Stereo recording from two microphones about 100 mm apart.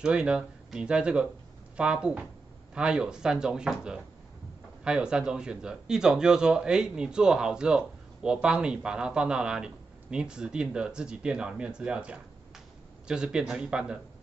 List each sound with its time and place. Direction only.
0.0 s speech: 10° right (ahead or behind)